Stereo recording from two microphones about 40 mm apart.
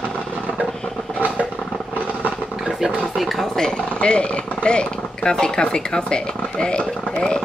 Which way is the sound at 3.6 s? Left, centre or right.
Left.